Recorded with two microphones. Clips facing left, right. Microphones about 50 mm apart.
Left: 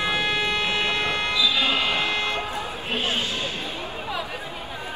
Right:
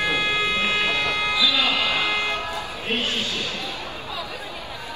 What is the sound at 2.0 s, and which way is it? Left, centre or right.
Buzzer, right.